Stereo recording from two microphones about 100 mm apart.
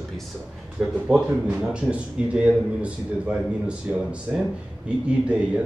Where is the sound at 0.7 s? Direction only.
10° right (ahead or behind).